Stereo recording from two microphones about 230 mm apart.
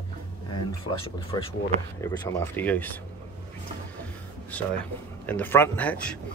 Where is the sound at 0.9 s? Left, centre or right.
Left.